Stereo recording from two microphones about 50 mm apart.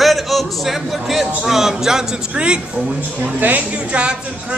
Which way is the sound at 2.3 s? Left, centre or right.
Right.